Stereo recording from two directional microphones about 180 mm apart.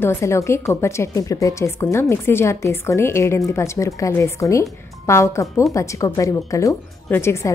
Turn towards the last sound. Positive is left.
turn(degrees=15)  # may be behind; listen again after turning